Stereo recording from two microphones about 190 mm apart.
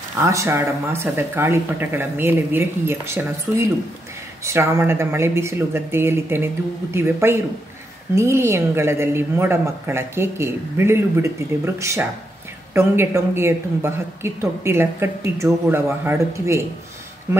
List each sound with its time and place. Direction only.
0.2 s a woman's voice: 15° right (ahead or behind)